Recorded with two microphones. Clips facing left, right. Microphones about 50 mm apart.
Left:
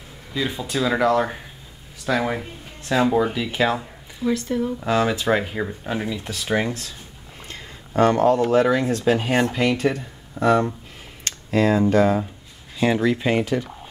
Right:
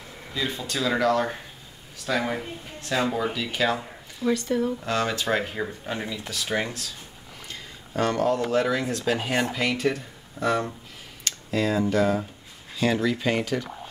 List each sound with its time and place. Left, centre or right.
0.3 s speech: centre
7.4 s a sound: left
8.5 s speech: left
11.2 s speech: left
12.7 s speech: left